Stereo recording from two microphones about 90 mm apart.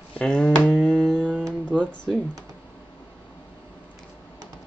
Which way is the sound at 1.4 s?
15° left (ahead or behind).